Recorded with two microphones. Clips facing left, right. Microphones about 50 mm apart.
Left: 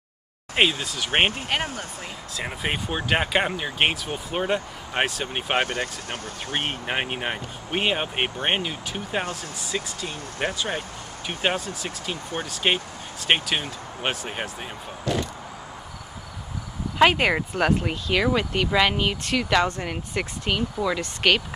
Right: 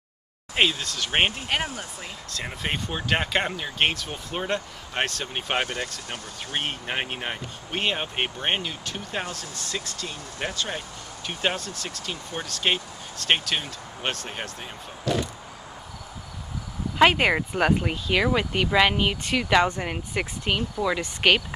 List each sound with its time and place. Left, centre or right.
0.6 s speech: centre
1.5 s speech: centre
5.7 s speech: left
6.5 s speech: centre
17.0 s speech: centre